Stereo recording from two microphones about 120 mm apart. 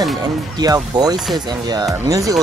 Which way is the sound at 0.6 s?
35° right (ahead or behind).